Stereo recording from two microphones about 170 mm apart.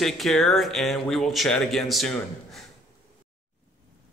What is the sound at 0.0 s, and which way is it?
Speech, centre (ahead or behind).